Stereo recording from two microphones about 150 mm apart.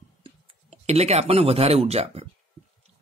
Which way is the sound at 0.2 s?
40° right (ahead or behind).